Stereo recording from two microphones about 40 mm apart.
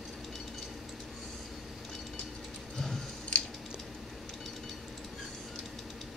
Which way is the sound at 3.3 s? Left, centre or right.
Left.